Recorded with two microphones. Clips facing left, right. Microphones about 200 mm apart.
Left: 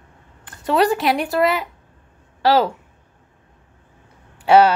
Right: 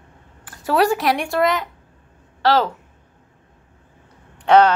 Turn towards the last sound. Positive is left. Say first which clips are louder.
# left 1 dB
turn(degrees=10)  # may be behind; listen again after turning